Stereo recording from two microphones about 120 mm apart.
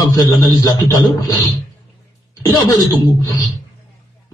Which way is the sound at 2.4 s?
25° left (ahead or behind).